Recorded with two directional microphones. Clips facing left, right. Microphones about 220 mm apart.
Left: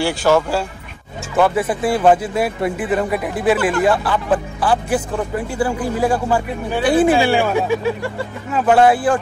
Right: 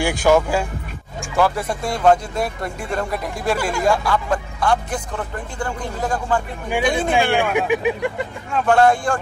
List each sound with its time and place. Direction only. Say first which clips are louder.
0.2 s speech: right 1 dB; 10° right (ahead or behind)
1.3 s speech: left 3 dB; centre (ahead or behind)
7.5 s speech: left 1 dB; 15° right (ahead or behind)
8.5 s speech: left 2 dB; 5° left (ahead or behind)